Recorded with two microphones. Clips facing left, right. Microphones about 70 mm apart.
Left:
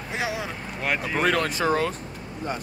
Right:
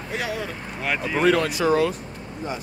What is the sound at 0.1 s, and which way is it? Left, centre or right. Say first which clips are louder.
Speech: right 1 dB; centre.